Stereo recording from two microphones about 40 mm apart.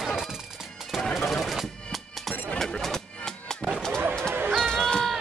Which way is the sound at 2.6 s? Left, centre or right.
Centre.